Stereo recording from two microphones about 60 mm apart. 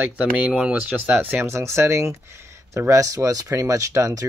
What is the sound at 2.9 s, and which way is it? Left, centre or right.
Speech, right.